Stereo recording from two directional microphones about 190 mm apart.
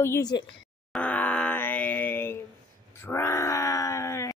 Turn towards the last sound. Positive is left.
turn(degrees=15)  # may be behind; listen again after turning